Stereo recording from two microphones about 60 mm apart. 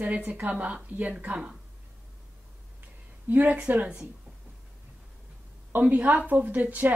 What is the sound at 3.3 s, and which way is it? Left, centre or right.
Speech, right.